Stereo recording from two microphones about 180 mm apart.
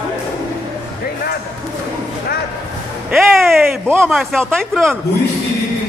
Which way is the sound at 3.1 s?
Centre (ahead or behind).